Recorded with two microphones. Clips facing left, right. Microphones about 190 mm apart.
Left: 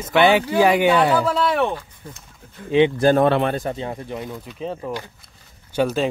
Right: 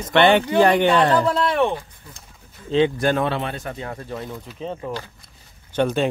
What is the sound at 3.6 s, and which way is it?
Speech, 25° left (ahead or behind).